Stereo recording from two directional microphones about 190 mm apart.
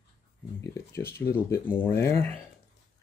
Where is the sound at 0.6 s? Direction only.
15° left (ahead or behind).